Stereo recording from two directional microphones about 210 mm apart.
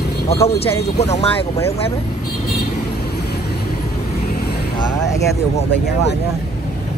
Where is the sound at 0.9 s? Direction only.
30° left (ahead or behind).